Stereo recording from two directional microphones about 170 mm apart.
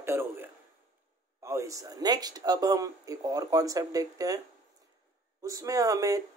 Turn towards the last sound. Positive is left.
turn(degrees=-20)  # may be behind; listen again after turning